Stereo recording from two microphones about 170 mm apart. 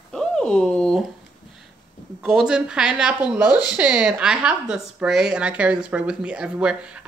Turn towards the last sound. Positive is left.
turn(degrees=-5)  # may be behind; listen again after turning